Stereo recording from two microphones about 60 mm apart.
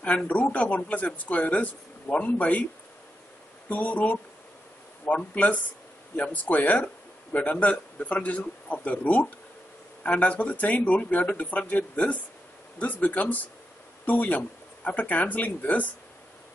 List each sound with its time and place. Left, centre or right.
0.0 s speech: left
3.6 s speech: left